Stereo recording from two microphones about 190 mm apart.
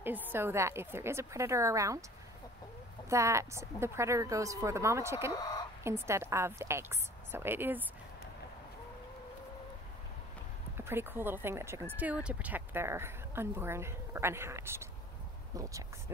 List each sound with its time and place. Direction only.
0.3 s speech: 10° right (ahead or behind)
3.1 s speech: 15° right (ahead or behind)
5.4 s chicken: 20° left (ahead or behind)
5.9 s speech: 15° right (ahead or behind)
10.8 s speech: 10° right (ahead or behind)